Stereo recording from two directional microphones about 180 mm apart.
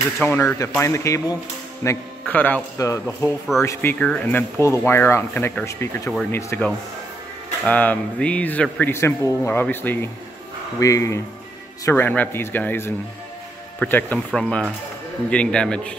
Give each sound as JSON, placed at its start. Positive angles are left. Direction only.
{"t": 0.2, "sound": "speech", "side_deg": 10}